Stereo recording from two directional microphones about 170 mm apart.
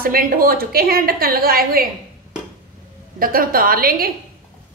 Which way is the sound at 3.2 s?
60° right (ahead or behind).